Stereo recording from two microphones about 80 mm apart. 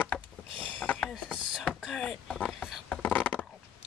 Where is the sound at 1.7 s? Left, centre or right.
Centre.